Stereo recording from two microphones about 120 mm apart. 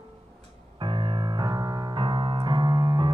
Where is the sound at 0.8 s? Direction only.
45° right (ahead or behind).